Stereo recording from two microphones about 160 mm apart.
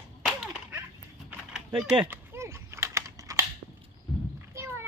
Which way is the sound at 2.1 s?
15° right (ahead or behind).